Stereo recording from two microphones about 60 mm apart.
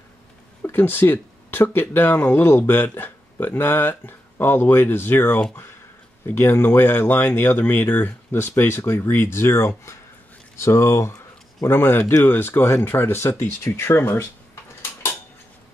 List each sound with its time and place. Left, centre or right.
0.6 s speech: left
11.7 s speech: left